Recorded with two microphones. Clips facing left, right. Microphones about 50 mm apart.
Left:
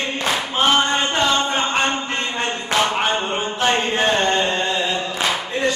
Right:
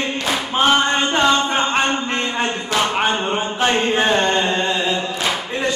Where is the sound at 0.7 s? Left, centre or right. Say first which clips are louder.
Right 1 dB; centre.